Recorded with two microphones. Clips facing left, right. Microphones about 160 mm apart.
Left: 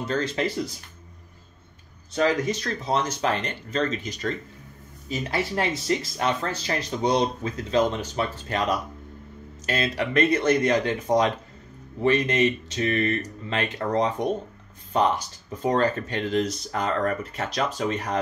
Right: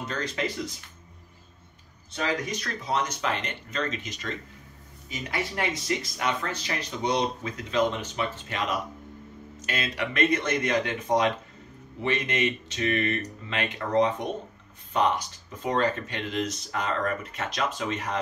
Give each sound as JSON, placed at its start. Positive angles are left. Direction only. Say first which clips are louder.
{"t": 0.0, "sound": "speech", "louder": "left 5 dB", "side_deg": 30}
{"t": 2.1, "sound": "speech", "louder": "left 7 dB", "side_deg": 35}